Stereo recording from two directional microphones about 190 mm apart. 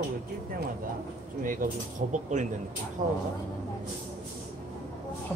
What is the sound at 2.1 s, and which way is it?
Speech, 40° right (ahead or behind).